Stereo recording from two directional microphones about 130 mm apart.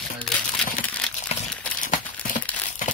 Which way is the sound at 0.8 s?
10° left (ahead or behind).